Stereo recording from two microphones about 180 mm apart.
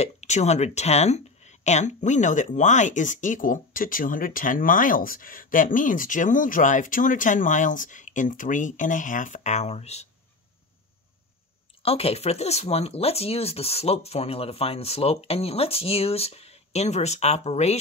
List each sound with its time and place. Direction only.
0.0 s speech: 40° left (ahead or behind)
11.8 s speech: 35° left (ahead or behind)